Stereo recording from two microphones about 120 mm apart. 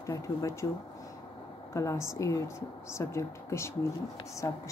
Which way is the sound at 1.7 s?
25° left (ahead or behind).